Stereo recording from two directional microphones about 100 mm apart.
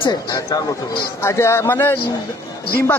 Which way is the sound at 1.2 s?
25° left (ahead or behind).